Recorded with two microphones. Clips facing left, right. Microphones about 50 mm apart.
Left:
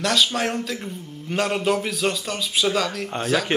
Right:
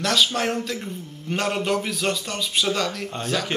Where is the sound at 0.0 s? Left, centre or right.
Centre.